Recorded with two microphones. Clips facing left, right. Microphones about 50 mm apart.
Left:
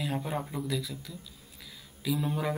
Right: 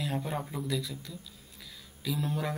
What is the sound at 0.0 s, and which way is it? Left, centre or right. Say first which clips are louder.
Speech: left 1 dB; centre.